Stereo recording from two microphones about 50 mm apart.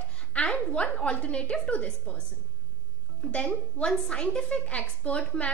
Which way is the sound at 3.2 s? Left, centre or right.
Left.